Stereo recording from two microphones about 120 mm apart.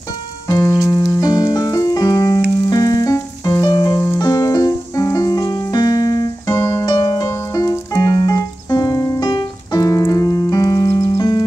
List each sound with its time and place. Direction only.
0.5 s music: 30° left (ahead or behind)